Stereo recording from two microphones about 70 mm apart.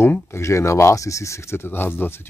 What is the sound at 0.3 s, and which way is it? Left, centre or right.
Speech, left.